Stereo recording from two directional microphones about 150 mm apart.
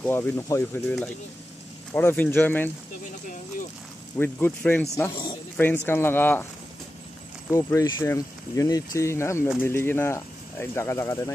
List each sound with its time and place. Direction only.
0.0 s speech: 10° left (ahead or behind)
0.8 s speech: 5° left (ahead or behind)
4.2 s speech: 15° left (ahead or behind)
5.1 s snake: 35° left (ahead or behind)
5.6 s speech: 15° left (ahead or behind)
7.5 s speech: 20° left (ahead or behind)